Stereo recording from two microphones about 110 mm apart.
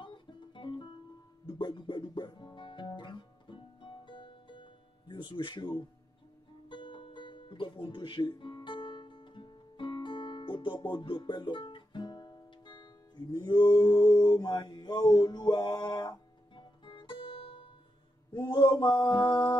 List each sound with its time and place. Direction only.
0.0 s music: 45° left (ahead or behind)
18.3 s mantra: 45° left (ahead or behind)